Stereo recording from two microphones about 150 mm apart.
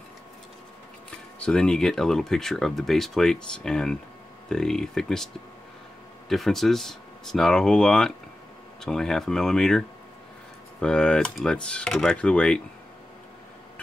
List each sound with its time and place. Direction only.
1.4 s speech: 5° left (ahead or behind)